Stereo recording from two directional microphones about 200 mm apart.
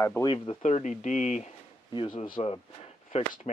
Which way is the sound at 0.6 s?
35° left (ahead or behind).